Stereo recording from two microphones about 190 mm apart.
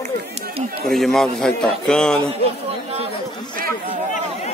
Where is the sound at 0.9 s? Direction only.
Centre (ahead or behind).